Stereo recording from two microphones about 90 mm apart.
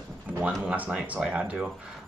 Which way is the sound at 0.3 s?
15° right (ahead or behind).